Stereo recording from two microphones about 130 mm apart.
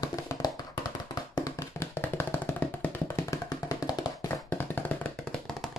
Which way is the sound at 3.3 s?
30° left (ahead or behind).